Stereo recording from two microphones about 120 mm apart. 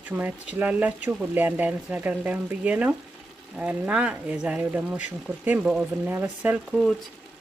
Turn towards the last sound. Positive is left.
turn(degrees=5)  # may be behind; listen again after turning